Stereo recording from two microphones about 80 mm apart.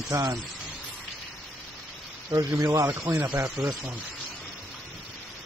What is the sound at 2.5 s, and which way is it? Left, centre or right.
Speech, right.